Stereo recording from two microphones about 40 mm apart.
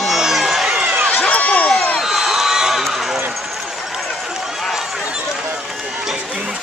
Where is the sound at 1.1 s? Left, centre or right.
Left.